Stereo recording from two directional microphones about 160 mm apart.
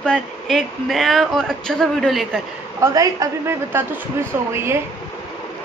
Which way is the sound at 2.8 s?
20° right (ahead or behind).